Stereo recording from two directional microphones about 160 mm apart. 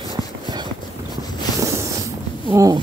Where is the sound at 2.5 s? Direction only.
20° right (ahead or behind).